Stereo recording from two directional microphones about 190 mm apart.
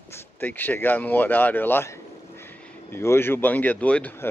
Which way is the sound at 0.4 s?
10° left (ahead or behind).